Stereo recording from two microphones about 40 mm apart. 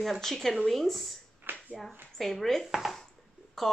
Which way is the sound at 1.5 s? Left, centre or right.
Right.